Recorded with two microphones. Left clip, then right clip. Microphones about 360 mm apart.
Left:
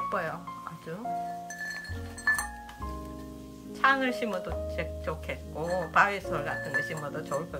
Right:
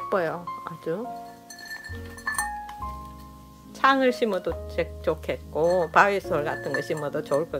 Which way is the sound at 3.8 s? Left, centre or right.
Centre.